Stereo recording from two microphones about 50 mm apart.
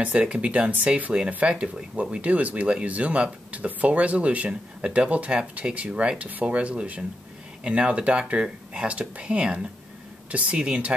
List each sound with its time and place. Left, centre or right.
0.0 s speech: right
1.5 s speech: centre